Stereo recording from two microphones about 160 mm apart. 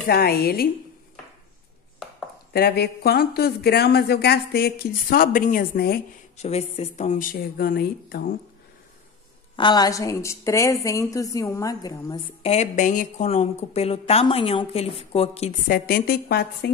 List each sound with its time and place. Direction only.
0.1 s speech: 75° left (ahead or behind)
2.5 s speech: 80° left
6.3 s speech: 40° left (ahead or behind); by 8.3 s 70° left (ahead or behind)
9.6 s a woman's voice: 25° left (ahead or behind)
12.4 s a woman's voice: 45° left (ahead or behind)
15.7 s a woman's voice: 70° left (ahead or behind); by 16.7 s 90° left